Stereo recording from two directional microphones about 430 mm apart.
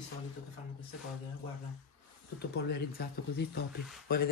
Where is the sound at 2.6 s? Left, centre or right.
Left.